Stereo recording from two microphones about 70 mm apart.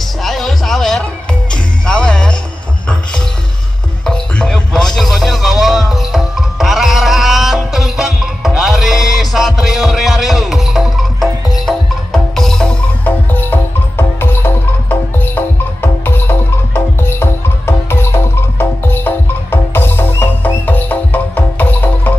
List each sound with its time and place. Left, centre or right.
0.2 s music: centre
13.0 s music: left